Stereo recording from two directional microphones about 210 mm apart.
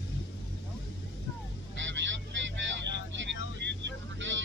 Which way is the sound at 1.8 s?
60° right (ahead or behind).